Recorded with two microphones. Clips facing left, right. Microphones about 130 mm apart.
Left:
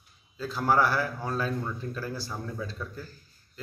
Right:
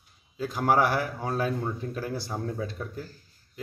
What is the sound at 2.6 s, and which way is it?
Speech, 60° right (ahead or behind).